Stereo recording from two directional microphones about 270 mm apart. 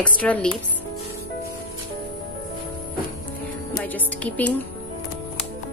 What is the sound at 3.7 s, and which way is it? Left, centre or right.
Music, centre.